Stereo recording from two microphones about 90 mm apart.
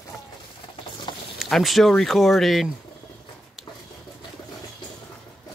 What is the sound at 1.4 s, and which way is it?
Speech, centre (ahead or behind).